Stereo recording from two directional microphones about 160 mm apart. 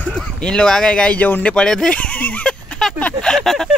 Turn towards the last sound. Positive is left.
turn(degrees=0)  # may be behind; listen again after turning